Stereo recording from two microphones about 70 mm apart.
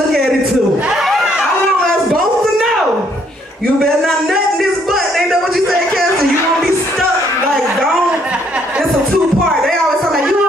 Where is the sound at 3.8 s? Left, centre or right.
Centre.